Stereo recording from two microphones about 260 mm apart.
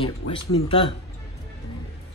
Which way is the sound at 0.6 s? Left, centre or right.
Centre.